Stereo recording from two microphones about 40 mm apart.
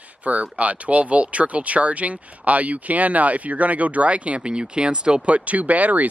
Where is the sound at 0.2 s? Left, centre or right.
Right.